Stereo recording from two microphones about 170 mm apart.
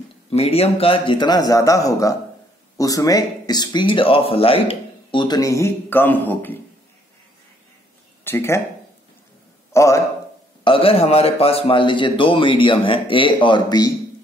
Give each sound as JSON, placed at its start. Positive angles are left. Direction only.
{"t": 0.3, "sound": "speech", "side_deg": 35}
{"t": 8.2, "sound": "speech", "side_deg": 15}
{"t": 9.7, "sound": "a man's voice", "side_deg": 15}
{"t": 10.6, "sound": "a man's voice", "side_deg": 30}